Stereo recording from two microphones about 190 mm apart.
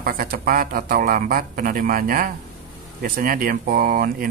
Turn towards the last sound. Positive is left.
turn(degrees=-50)  # may be behind; listen again after turning